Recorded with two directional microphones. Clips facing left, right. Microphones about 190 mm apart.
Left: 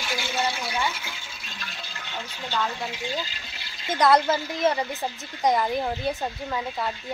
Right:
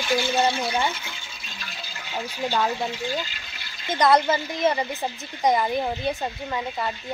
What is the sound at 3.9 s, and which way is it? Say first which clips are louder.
Speech: right 1 dB; centre (ahead or behind).